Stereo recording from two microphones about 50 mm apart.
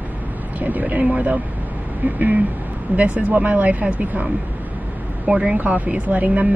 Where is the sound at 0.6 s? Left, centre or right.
Right.